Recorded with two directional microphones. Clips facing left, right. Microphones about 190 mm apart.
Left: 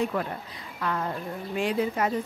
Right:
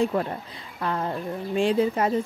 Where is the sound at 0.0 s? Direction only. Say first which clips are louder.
Right 4 dB; 30° right (ahead or behind).